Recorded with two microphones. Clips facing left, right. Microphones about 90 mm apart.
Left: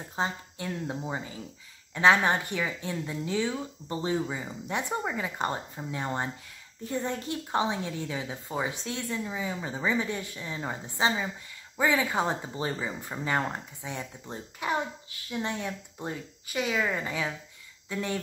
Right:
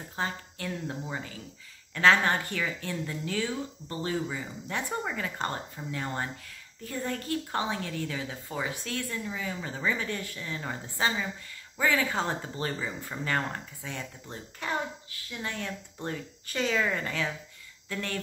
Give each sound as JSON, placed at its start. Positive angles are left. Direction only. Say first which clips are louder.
{"t": 0.1, "sound": "a woman's voice", "louder": "left 2 dB", "side_deg": 20}